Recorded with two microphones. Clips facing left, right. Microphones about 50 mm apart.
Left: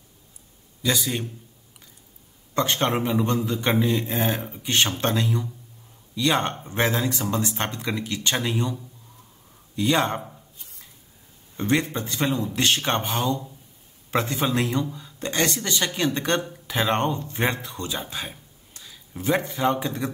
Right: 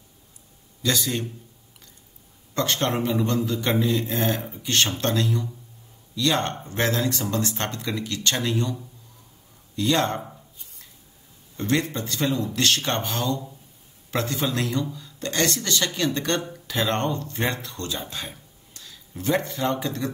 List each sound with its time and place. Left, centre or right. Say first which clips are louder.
0.8 s speech: even; centre
2.5 s a man's voice: left 1 dB; centre
3.7 s speech: even; centre
9.8 s speech: left 1 dB; centre
11.5 s a man's voice: left 1 dB; centre